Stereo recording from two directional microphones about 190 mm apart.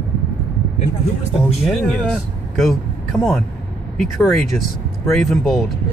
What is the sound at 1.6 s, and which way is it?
Speech, centre (ahead or behind).